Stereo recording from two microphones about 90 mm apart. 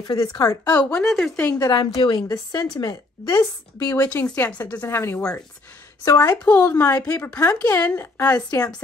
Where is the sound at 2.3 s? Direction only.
45° left (ahead or behind).